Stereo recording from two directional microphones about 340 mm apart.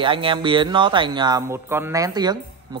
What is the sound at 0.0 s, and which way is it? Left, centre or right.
Speech, centre.